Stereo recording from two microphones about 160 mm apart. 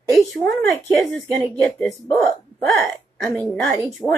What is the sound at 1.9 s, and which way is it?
Speech, 15° left (ahead or behind).